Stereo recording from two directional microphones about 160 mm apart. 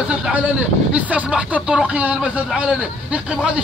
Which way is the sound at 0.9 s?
10° right (ahead or behind).